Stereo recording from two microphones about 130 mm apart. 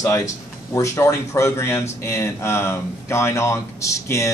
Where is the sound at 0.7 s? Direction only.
20° left (ahead or behind).